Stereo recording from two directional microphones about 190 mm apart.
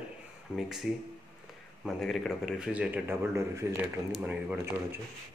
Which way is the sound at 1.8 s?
Centre (ahead or behind).